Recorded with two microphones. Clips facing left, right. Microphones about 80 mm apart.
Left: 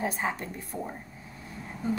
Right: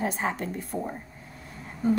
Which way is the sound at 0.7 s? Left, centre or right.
Centre.